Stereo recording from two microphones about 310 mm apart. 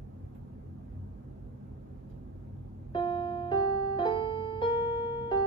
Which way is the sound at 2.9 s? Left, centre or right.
Centre.